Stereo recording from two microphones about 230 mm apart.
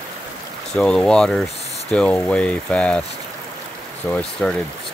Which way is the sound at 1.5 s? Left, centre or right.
Left.